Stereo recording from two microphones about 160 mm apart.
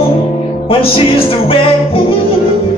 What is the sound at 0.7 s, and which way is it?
Music, 35° left (ahead or behind).